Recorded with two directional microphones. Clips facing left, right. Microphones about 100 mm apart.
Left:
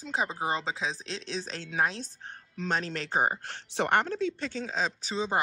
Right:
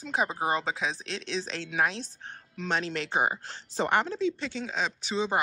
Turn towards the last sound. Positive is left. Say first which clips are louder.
# right 1 dB
turn(degrees=35)  # may be behind; listen again after turning